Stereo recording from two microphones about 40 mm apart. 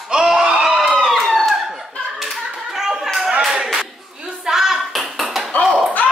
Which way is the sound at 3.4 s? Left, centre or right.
Centre.